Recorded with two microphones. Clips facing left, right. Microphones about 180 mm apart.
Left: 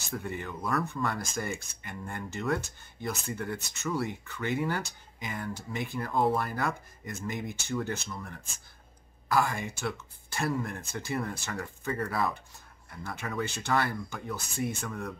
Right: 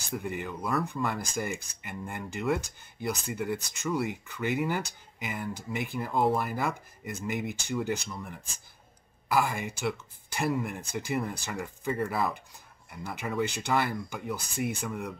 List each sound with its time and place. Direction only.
0.1 s speech: 10° right (ahead or behind)
1.4 s speech: 10° right (ahead or behind)
9.6 s speech: 15° right (ahead or behind)